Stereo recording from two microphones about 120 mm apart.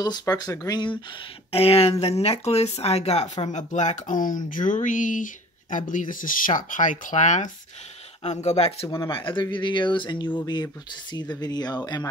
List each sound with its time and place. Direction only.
0.0 s speech: 30° left (ahead or behind)
1.5 s speech: 55° left (ahead or behind)
3.4 s speech: 80° left
8.2 s speech: 65° left (ahead or behind)
8.8 s speech: 30° left (ahead or behind)
9.1 s speech: 45° left (ahead or behind)